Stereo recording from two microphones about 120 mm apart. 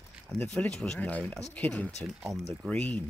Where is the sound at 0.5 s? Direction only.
5° left (ahead or behind).